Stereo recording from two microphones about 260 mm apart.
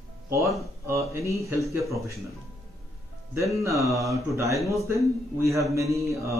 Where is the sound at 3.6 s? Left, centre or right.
Centre.